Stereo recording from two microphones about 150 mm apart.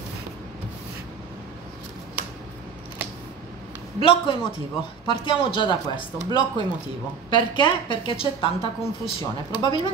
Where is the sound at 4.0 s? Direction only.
35° left (ahead or behind).